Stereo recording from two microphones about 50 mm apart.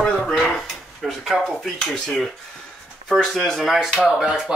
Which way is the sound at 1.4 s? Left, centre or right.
Centre.